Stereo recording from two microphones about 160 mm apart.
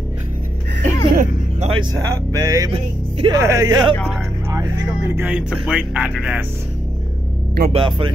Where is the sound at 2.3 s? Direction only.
20° right (ahead or behind).